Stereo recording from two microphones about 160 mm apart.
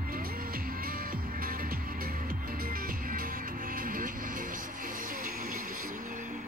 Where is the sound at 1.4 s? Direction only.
65° right (ahead or behind).